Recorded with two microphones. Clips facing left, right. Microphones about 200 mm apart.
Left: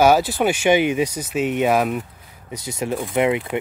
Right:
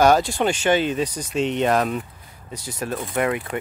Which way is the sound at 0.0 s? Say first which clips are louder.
Left 1 dB; 5° left (ahead or behind).